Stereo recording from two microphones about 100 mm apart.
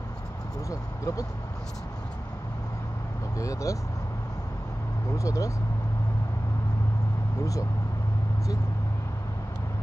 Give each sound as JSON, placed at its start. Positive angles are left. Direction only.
{"t": 0.7, "sound": "speech", "side_deg": 35}
{"t": 3.3, "sound": "speech", "side_deg": 35}
{"t": 5.1, "sound": "speech", "side_deg": 35}